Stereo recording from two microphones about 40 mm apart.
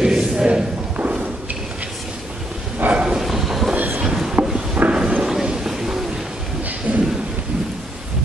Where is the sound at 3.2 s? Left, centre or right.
Centre.